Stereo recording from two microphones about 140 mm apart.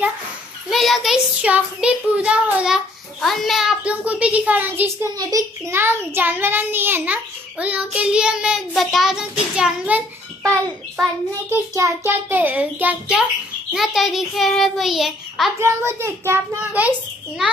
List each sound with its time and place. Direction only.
0.7 s a child's voice: centre (ahead or behind)
11.5 s a child's voice: 20° right (ahead or behind); by 15.5 s centre (ahead or behind)
15.6 s a child's voice: 15° right (ahead or behind)